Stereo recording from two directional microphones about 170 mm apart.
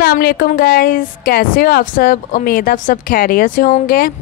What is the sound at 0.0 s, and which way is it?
A woman's voice, 65° left (ahead or behind).